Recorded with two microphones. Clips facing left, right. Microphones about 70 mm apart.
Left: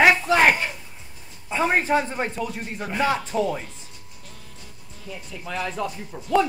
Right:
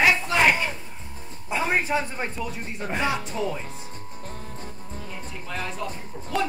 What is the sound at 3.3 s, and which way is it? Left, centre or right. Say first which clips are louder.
Speech: left 5 dB; left.